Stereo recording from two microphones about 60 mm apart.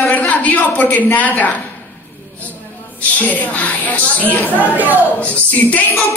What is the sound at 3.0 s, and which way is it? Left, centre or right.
Speech, left.